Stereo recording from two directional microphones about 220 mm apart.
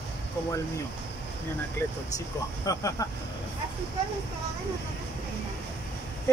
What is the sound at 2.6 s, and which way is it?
Speech, 15° left (ahead or behind).